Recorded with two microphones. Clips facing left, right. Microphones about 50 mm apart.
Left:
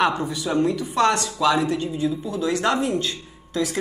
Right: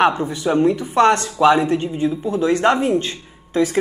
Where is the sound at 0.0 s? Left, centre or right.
Right.